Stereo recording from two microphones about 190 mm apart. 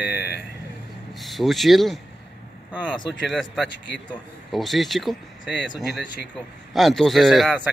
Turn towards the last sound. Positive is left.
turn(degrees=0)  # may be behind; listen again after turning